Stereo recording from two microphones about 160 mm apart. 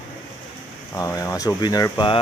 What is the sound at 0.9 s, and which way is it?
Speech, 20° left (ahead or behind).